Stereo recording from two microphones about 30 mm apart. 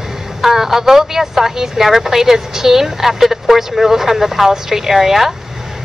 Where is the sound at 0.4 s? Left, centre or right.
Centre.